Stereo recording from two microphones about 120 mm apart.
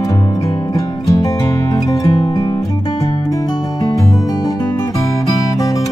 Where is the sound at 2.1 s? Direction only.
50° left (ahead or behind).